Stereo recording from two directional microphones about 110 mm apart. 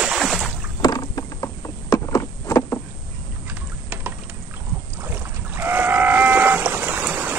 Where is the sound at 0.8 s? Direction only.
35° left (ahead or behind).